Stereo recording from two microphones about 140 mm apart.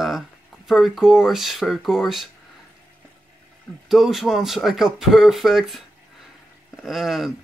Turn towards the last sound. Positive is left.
turn(degrees=0)  # may be behind; listen again after turning